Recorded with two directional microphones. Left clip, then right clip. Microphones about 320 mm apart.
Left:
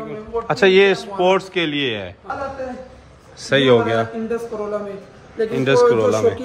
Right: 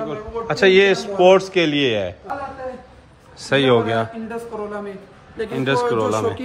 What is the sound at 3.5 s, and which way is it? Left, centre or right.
Speech, centre.